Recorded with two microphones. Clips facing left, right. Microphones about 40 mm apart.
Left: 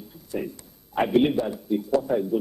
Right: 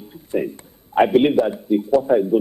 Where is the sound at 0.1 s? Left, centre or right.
Right.